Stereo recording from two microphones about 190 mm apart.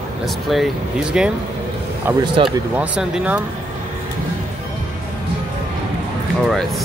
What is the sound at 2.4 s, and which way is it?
Speech, 5° right (ahead or behind).